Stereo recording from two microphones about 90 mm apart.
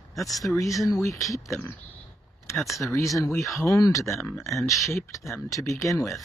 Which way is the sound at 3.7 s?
35° left (ahead or behind).